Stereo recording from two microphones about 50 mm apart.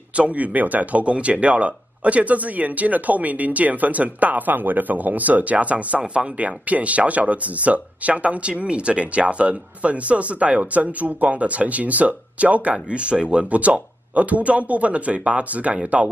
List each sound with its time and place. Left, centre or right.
0.1 s speech: right